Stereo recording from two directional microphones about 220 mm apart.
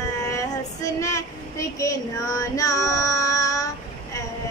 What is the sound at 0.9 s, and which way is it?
Child singing, 15° left (ahead or behind).